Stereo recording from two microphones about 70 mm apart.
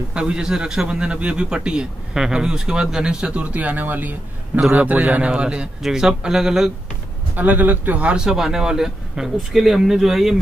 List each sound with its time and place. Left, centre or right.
0.1 s a man's voice: centre
7.3 s a man's voice: right; by 10.3 s centre